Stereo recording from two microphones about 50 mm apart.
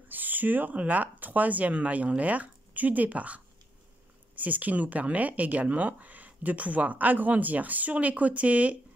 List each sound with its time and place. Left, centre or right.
0.1 s speech: right